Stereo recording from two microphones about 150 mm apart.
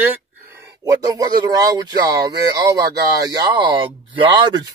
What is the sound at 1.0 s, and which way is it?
Speech, 25° right (ahead or behind).